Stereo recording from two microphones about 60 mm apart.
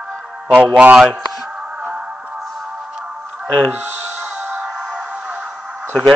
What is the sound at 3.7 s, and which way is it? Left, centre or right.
Speech, right.